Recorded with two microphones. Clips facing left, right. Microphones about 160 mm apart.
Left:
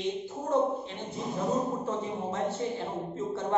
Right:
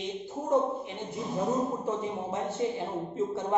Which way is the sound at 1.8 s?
15° right (ahead or behind).